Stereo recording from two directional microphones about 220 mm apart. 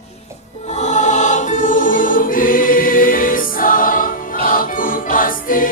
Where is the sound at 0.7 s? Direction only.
35° left (ahead or behind).